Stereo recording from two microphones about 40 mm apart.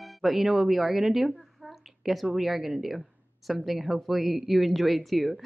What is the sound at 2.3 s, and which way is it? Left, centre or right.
A woman's voice, centre.